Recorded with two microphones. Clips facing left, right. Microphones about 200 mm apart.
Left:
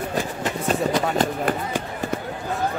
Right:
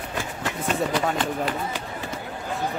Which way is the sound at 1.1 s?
45° left (ahead or behind).